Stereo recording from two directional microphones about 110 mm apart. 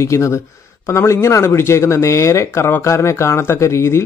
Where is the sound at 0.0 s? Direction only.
25° left (ahead or behind).